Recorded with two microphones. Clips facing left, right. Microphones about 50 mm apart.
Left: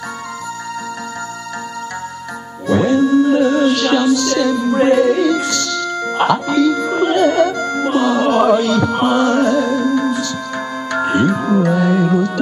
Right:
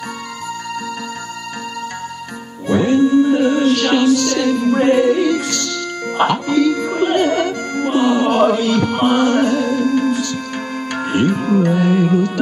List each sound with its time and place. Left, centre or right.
2.6 s music: right
3.7 s speech: right
4.9 s carnatic music: right
5.5 s music: right
6.2 s carnatic music: right
7.0 s music: right
8.6 s carnatic music: right
9.5 s music: left
10.2 s music: right